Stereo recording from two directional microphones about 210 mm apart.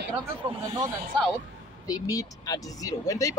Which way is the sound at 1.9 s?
15° left (ahead or behind).